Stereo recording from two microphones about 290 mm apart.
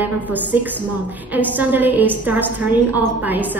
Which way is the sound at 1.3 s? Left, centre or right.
Centre.